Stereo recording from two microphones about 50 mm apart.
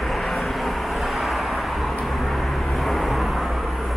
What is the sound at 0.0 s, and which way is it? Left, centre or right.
Vehicle, centre.